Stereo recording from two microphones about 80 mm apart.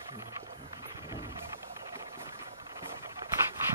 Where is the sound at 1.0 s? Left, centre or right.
Right.